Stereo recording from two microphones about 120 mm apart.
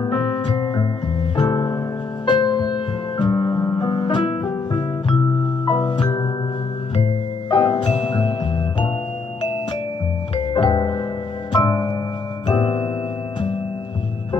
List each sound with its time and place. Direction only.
0.0 s music: 40° left (ahead or behind)
10.5 s music: 40° left (ahead or behind)